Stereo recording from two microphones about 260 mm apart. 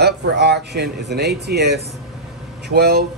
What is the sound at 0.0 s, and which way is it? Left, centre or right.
Speech, right.